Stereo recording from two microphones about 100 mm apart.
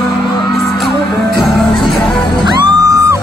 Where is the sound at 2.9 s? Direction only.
35° right (ahead or behind).